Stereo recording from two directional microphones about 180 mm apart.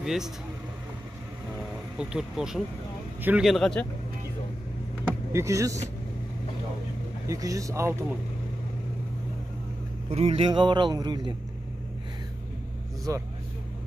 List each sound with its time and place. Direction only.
0.0 s speech: centre (ahead or behind)
2.0 s speech: 5° right (ahead or behind)
5.0 s vehicle: 15° right (ahead or behind)
7.2 s speech: 20° right (ahead or behind)
10.0 s speech: 35° right (ahead or behind)
13.1 s speech: 15° right (ahead or behind)